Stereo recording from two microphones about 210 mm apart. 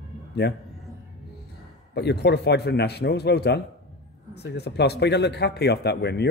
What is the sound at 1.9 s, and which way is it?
Speech, 50° left (ahead or behind).